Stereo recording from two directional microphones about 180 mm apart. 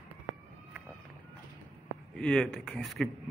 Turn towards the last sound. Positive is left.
turn(degrees=0)  # may be behind; listen again after turning